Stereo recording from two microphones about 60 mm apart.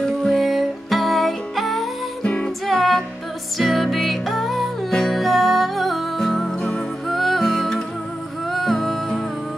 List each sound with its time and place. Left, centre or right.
0.0 s music: centre
2.2 s music: centre
2.6 s music: centre